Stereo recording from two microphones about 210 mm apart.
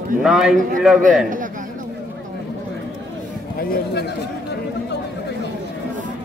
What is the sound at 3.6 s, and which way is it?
Speech, 50° left (ahead or behind).